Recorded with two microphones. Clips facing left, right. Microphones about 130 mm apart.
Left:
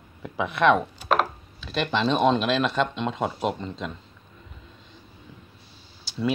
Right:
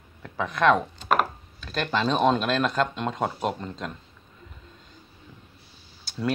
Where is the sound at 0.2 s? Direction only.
5° left (ahead or behind).